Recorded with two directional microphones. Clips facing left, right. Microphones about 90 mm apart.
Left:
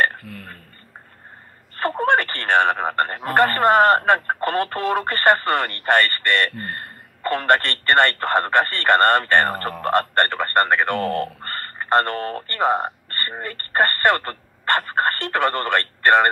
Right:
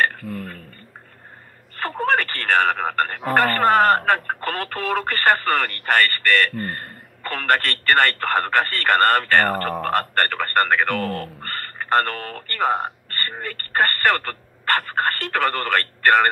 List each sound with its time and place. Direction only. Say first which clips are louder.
1.8 s speech: left 2 dB; 20° left (ahead or behind)